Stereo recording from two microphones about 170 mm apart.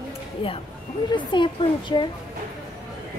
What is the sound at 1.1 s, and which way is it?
Speech, 25° left (ahead or behind).